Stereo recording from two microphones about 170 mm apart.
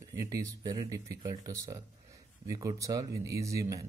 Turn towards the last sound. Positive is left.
turn(degrees=-20)  # may be behind; listen again after turning